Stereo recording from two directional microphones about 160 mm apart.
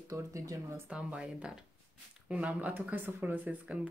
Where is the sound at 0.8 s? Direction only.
5° right (ahead or behind).